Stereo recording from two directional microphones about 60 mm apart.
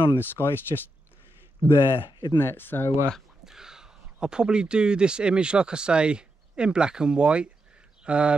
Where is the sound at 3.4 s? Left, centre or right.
Centre.